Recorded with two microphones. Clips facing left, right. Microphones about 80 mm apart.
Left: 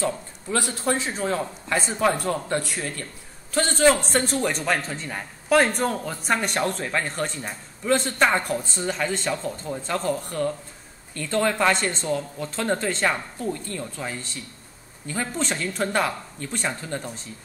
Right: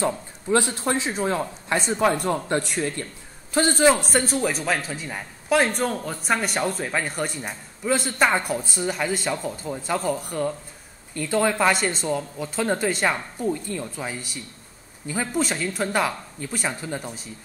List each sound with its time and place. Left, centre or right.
0.0 s speech: right
3.5 s speech: centre
3.9 s speech: centre